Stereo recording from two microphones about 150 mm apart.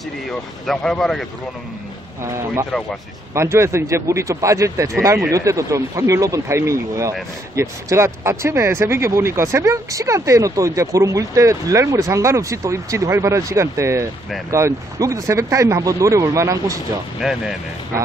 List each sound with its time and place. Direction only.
0.3 s speech: centre (ahead or behind)
2.2 s speech: 20° right (ahead or behind)
17.2 s speech: centre (ahead or behind)